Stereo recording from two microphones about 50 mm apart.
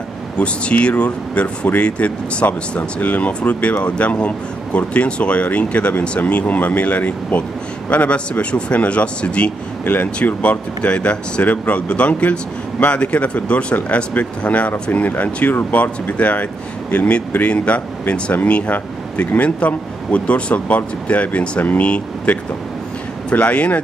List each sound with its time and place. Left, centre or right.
0.4 s speech: left